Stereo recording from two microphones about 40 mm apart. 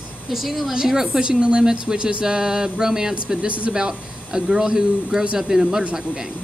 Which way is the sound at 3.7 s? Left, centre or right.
Centre.